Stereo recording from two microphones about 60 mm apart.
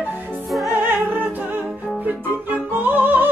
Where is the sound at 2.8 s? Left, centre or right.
Right.